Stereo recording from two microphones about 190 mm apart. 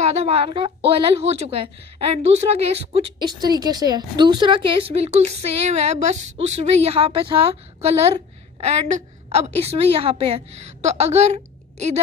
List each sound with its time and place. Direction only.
0.0 s a woman's voice: 35° right (ahead or behind)